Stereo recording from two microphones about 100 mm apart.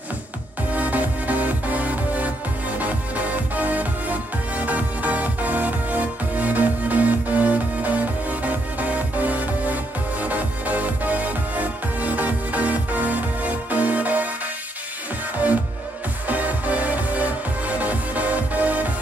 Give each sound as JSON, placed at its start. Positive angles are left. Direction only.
{"t": 0.7, "sound": "music", "side_deg": -15}
{"t": 3.5, "sound": "music", "side_deg": -15}
{"t": 16.3, "sound": "music", "side_deg": -15}